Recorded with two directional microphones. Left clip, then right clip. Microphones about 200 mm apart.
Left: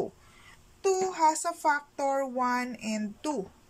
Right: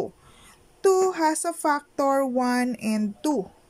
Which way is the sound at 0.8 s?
30° right (ahead or behind).